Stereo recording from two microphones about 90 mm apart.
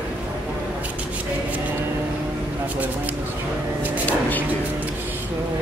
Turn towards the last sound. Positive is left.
turn(degrees=20)  # may be behind; listen again after turning